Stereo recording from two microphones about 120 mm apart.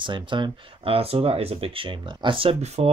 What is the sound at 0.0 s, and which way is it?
Speech, 40° right (ahead or behind).